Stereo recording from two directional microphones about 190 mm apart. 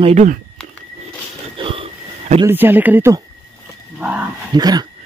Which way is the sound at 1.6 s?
25° right (ahead or behind).